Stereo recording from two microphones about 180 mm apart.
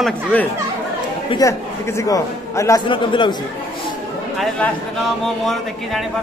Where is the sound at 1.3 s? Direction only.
20° left (ahead or behind).